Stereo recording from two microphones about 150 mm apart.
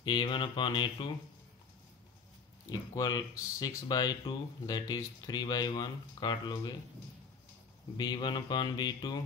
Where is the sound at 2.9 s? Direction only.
25° left (ahead or behind).